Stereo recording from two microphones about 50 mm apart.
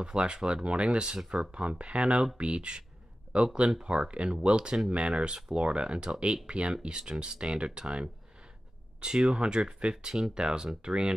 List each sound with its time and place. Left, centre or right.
0.0 s speech: centre
3.8 s speech: centre